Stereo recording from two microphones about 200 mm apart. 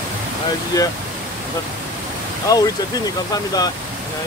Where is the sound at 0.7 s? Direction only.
20° left (ahead or behind).